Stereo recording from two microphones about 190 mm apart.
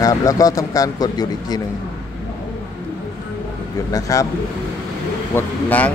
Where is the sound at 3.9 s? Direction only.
20° left (ahead or behind).